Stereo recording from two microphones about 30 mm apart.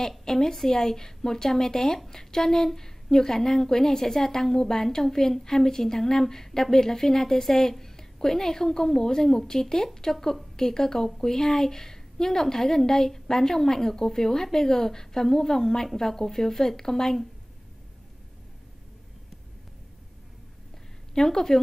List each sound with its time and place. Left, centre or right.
0.2 s a woman's voice: centre
21.1 s a woman's voice: centre